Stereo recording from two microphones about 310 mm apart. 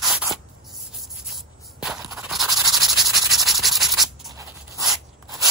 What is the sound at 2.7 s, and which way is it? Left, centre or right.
Sanding, centre.